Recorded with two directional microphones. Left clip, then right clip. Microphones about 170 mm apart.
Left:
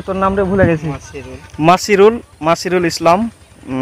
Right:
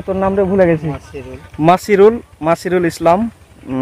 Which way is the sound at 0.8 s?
25° right (ahead or behind).